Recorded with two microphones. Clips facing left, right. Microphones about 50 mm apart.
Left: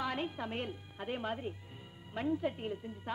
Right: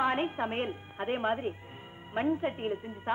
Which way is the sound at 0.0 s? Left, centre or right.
Right.